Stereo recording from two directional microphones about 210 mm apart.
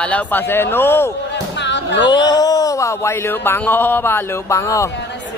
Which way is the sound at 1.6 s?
55° left (ahead or behind).